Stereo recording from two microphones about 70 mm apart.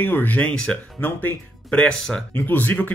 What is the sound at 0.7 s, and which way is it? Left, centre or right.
Speech, centre.